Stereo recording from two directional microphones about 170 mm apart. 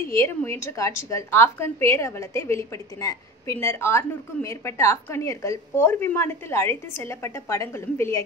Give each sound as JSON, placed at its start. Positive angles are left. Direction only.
{"t": 0.1, "sound": "a woman's voice", "side_deg": 15}